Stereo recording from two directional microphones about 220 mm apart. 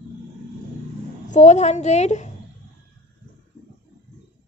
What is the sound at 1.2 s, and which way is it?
A woman's voice, 35° left (ahead or behind).